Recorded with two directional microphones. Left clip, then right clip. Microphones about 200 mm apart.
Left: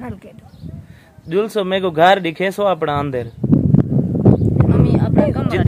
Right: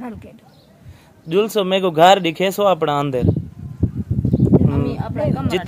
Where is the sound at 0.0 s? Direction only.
15° left (ahead or behind).